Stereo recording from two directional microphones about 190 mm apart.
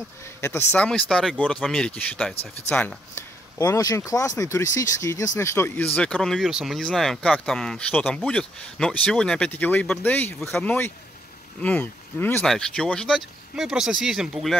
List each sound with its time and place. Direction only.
0.4 s speech: 15° left (ahead or behind)
2.3 s speech: 30° left (ahead or behind)
2.7 s speech: 5° left (ahead or behind)
3.5 s speech: 15° left (ahead or behind); by 14.6 s centre (ahead or behind)